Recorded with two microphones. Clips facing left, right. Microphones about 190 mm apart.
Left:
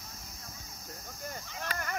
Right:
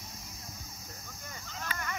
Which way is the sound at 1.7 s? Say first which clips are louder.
Left 2 dB; 45° left (ahead or behind).